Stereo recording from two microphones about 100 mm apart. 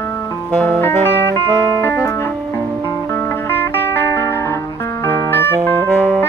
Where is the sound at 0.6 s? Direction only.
20° left (ahead or behind).